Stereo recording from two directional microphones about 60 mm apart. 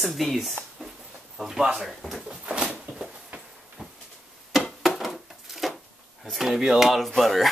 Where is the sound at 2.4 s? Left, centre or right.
Centre.